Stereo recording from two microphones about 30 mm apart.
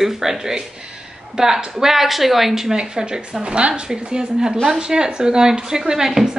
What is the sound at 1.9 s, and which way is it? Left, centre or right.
Speech, centre.